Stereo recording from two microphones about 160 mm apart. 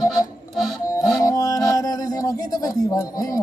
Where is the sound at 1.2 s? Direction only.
20° left (ahead or behind).